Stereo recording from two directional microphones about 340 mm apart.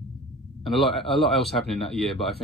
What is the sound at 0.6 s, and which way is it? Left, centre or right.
Speech, centre.